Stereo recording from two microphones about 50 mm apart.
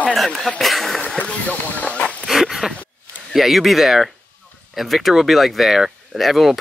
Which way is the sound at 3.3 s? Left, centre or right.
Centre.